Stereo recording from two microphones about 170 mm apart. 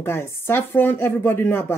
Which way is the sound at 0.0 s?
15° left (ahead or behind).